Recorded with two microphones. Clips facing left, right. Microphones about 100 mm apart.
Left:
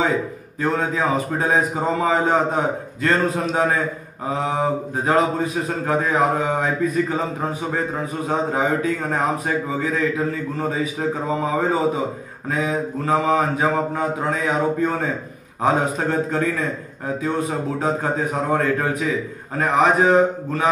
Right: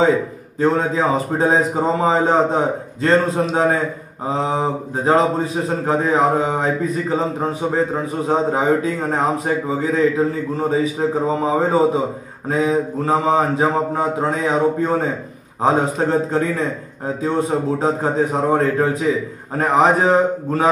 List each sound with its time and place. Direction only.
0.6 s a man's voice: 30° right (ahead or behind)
8.3 s a man's voice: 25° right (ahead or behind)